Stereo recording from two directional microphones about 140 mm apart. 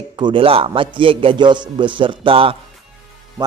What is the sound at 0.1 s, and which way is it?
Speech, 35° right (ahead or behind).